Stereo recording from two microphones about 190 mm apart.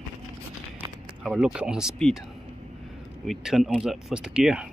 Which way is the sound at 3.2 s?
Centre (ahead or behind).